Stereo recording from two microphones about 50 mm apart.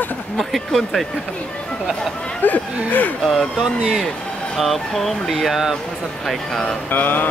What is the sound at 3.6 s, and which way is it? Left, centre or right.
Speech, centre.